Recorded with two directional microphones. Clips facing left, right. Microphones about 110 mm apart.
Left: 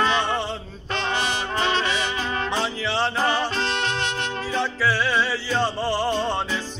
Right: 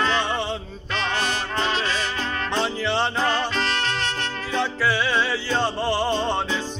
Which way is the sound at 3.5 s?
25° left (ahead or behind).